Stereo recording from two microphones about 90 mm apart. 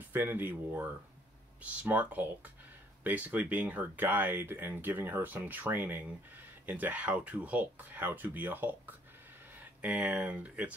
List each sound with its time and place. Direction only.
0.1 s speech: 20° right (ahead or behind)